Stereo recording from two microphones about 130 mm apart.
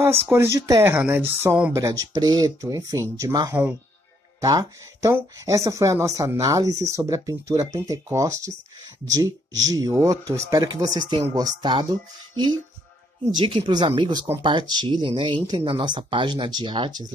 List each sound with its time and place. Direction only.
0.3 s speech: 20° right (ahead or behind); by 11.9 s 35° right (ahead or behind)
13.3 s speech: 40° right (ahead or behind)